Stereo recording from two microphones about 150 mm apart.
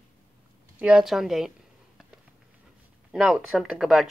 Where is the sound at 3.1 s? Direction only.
5° right (ahead or behind).